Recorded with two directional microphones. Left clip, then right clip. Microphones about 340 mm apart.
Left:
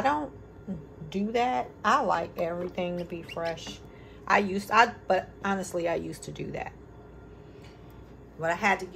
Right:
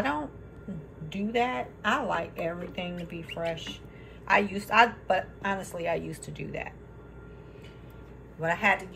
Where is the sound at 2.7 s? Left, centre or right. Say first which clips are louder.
Left 4 dB; left.